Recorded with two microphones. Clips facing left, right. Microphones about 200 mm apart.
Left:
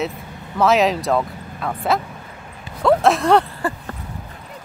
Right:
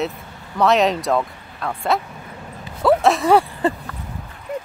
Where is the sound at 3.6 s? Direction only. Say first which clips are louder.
Right 4 dB; 20° right (ahead or behind).